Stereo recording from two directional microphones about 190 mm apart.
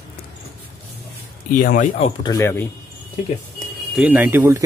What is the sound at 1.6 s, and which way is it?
Speech, 45° left (ahead or behind).